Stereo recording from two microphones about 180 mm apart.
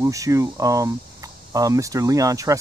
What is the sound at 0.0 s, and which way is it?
Speech, 20° right (ahead or behind).